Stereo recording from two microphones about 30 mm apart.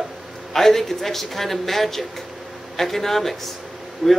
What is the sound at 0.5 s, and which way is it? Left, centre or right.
A man's voice, centre.